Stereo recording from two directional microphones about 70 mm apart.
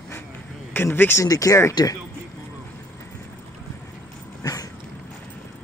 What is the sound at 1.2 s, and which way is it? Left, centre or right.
Speech, left.